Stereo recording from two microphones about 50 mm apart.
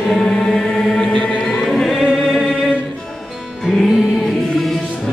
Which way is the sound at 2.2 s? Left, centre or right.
Centre.